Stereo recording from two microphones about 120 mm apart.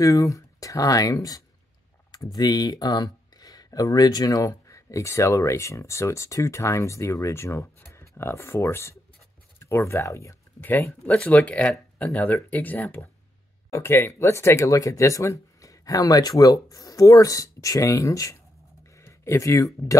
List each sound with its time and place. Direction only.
0.0 s speech: 30° left (ahead or behind)